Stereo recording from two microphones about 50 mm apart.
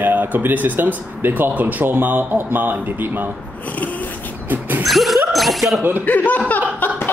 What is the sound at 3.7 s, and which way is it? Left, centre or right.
Speech, left.